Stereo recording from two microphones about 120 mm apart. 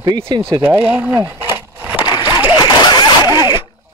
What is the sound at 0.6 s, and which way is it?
Speech, 15° right (ahead or behind).